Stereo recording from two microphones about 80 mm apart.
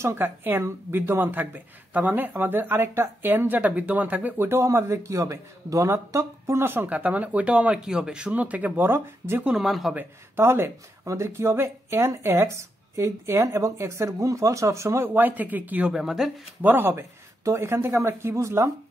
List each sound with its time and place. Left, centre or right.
0.0 s speech: right
9.6 s speech: centre
9.9 s speech: right
15.9 s speech: centre
16.6 s speech: right